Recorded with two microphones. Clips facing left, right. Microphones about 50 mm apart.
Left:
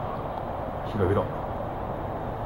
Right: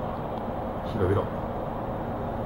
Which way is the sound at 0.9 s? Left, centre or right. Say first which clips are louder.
Left 1 dB; centre.